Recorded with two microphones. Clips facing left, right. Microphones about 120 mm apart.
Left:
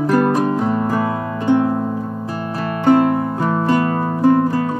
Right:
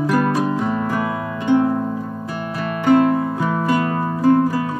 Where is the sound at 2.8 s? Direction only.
35° left (ahead or behind).